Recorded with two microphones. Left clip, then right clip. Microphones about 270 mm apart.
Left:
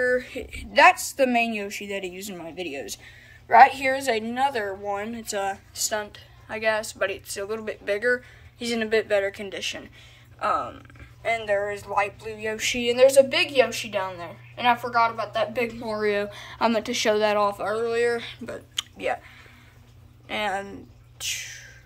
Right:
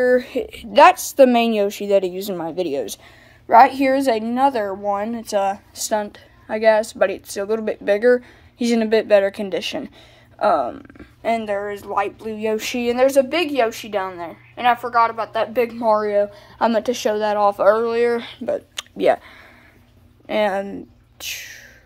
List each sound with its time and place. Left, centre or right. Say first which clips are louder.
0.0 s a woman's voice: right 7 dB; right
11.2 s a woman's voice: right 3 dB; right
12.4 s a woman's voice: right 4 dB; centre
16.0 s speech: right 6 dB; centre
17.6 s speech: right 9 dB; centre
18.9 s a woman's voice: right 14 dB; right
21.2 s a sound: right 1 dB; centre